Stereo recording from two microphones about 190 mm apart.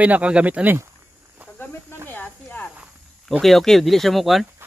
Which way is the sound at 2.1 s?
10° left (ahead or behind).